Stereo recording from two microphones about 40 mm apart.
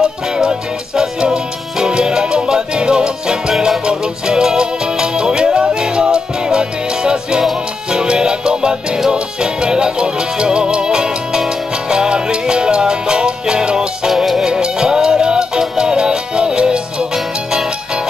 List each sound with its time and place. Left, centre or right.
0.0 s music: centre
3.5 s music: centre
3.8 s music: centre
14.1 s music: centre
14.5 s music: centre